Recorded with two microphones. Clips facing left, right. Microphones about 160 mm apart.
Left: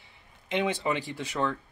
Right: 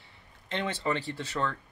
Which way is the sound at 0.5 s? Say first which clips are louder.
Left 3 dB; 15° left (ahead or behind).